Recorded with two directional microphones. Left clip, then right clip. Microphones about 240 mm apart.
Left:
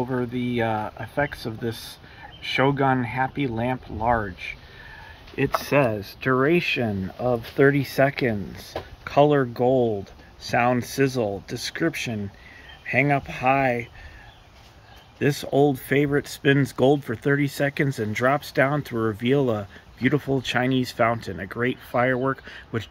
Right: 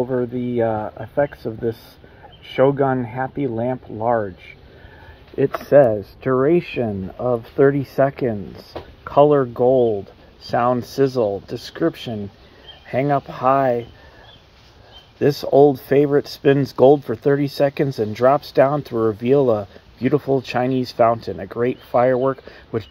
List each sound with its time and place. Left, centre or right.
0.0 s speech: centre
5.7 s speech: centre
10.4 s speech: centre
15.1 s speech: centre